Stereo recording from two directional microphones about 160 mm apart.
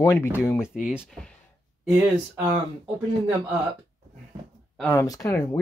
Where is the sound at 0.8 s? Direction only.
Centre (ahead or behind).